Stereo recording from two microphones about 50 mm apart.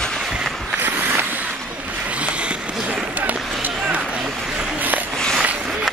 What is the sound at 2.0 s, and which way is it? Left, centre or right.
Run, right.